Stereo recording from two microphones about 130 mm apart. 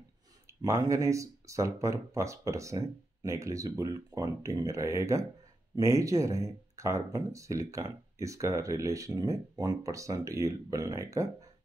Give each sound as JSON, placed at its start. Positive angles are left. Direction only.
{"t": 0.6, "sound": "speech", "side_deg": -25}